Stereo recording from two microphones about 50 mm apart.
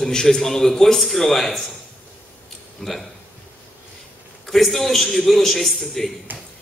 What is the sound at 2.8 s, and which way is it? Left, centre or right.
Speech, centre.